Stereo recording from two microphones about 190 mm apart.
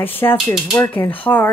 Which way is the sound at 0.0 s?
10° left (ahead or behind).